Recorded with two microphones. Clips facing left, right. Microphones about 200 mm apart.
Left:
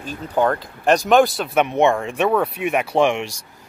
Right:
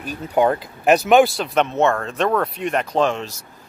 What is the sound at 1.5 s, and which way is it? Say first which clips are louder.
Speech: left 2 dB; 15° left (ahead or behind).